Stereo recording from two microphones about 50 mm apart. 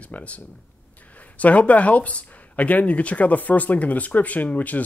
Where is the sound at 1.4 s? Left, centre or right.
Left.